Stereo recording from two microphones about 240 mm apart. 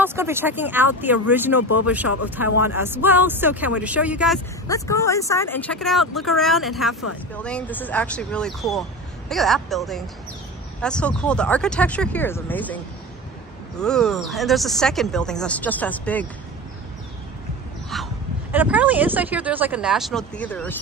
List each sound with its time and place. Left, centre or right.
0.0 s speech: centre
1.6 s speech: left
2.2 s speech: centre
4.6 s speech: centre
17.8 s speech: centre